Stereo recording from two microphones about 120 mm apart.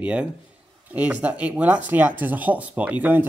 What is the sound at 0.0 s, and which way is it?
Speech, 10° right (ahead or behind).